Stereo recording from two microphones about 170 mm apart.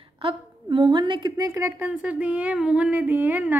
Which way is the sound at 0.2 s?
30° right (ahead or behind).